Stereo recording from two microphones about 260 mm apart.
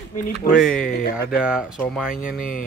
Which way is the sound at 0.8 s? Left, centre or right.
Left.